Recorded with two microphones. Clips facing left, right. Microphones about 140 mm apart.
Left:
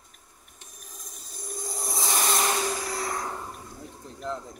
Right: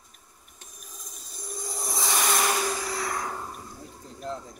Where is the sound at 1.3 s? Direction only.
Centre (ahead or behind).